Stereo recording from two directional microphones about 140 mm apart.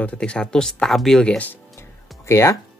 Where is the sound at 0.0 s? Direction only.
5° left (ahead or behind).